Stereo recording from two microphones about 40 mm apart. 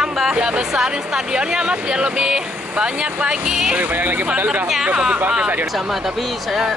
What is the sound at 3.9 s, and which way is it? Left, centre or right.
Speech, right.